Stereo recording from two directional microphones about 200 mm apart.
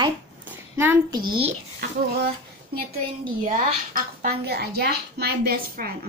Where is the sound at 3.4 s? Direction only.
40° right (ahead or behind).